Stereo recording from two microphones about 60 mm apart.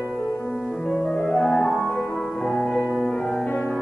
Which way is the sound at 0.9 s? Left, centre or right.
Centre.